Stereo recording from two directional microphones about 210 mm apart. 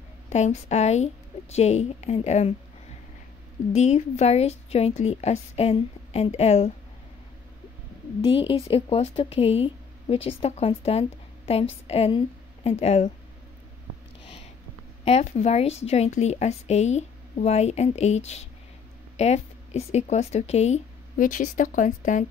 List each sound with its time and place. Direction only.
0.3 s a woman's voice: 35° left (ahead or behind)
3.7 s a woman's voice: 35° left (ahead or behind)
8.2 s a woman's voice: 25° left (ahead or behind)
15.0 s a woman's voice: 30° left (ahead or behind)